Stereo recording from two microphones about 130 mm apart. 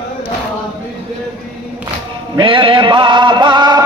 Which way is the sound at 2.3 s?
40° right (ahead or behind).